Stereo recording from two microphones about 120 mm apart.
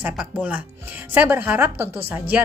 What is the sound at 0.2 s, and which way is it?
A woman's voice, 15° right (ahead or behind).